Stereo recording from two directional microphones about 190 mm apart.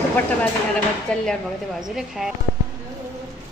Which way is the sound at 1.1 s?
5° left (ahead or behind).